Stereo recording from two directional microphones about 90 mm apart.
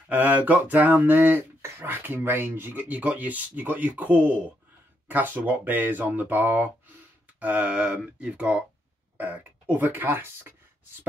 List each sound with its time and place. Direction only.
0.1 s speech: 20° right (ahead or behind)